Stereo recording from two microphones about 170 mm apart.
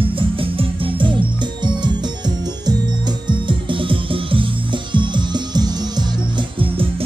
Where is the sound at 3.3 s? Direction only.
30° right (ahead or behind).